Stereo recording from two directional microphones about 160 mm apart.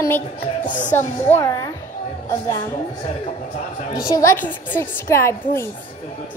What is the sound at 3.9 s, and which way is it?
Speech, 25° left (ahead or behind).